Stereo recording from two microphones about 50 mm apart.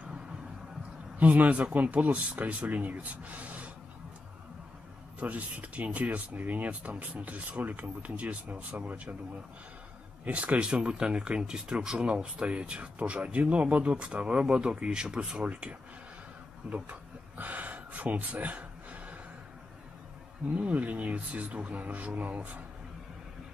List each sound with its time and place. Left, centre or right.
1.2 s speech: right
5.2 s speech: right
10.2 s speech: right
16.7 s a sound: right
20.5 s speech: right